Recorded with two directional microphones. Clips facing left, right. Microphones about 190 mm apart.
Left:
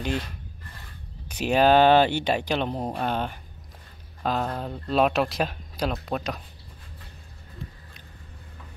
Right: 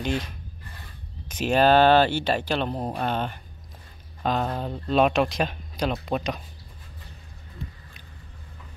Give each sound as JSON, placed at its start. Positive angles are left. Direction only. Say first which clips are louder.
{"t": 1.4, "sound": "speech", "louder": "even", "side_deg": 10}
{"t": 2.8, "sound": "speech", "louder": "even", "side_deg": 0}